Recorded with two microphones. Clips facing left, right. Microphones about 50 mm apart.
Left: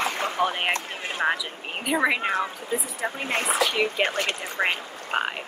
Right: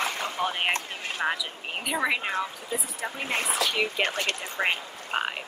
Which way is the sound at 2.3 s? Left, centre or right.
Left.